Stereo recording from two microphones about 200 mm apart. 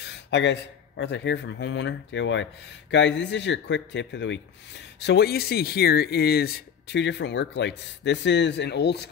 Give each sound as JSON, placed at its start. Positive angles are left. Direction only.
{"t": 0.0, "sound": "speech", "side_deg": 60}